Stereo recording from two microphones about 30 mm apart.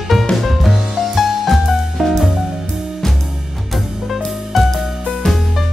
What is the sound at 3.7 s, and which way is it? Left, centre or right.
Music, centre.